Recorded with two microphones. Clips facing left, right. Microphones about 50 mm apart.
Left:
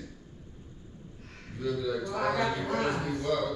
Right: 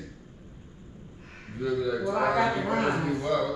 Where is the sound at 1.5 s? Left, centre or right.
Centre.